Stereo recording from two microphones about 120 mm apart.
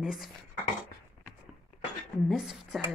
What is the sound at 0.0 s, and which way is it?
Speech, centre (ahead or behind).